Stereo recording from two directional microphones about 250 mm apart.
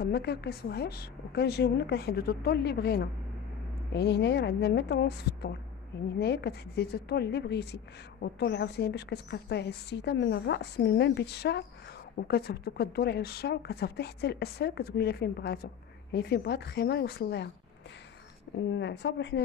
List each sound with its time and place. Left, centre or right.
0.0 s a woman's voice: left
18.7 s a woman's voice: left